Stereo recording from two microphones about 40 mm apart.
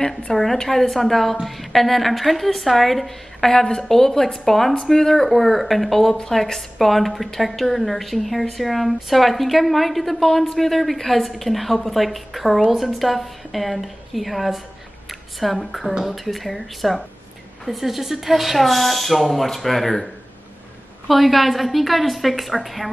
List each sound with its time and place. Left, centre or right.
0.3 s a woman's voice: centre
15.9 s speech: centre
16.3 s a woman's voice: centre
21.1 s a woman's voice: centre